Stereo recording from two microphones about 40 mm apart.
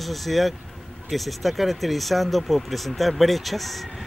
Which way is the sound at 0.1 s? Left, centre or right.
Centre.